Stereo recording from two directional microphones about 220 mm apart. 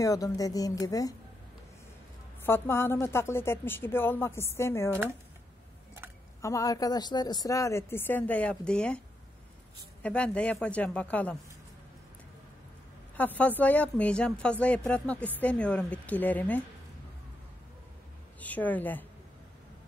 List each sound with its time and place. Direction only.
0.0 s speech: 15° left (ahead or behind)
2.4 s speech: 10° left (ahead or behind)
6.4 s speech: 15° left (ahead or behind)
10.0 s a man's voice: 5° left (ahead or behind)
13.1 s speech: 5° left (ahead or behind)
18.4 s speech: 5° left (ahead or behind)